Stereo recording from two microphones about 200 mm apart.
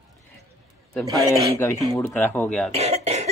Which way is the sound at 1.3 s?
10° left (ahead or behind).